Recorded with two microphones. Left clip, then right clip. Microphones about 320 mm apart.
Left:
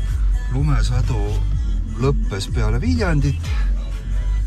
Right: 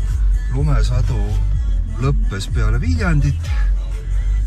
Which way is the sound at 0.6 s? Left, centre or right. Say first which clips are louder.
Right 1 dB; centre.